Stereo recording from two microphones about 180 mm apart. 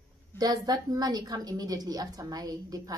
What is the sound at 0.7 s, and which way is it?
A woman's voice, 20° right (ahead or behind).